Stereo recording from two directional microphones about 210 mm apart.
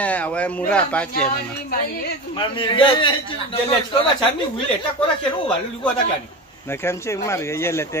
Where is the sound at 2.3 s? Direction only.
25° left (ahead or behind).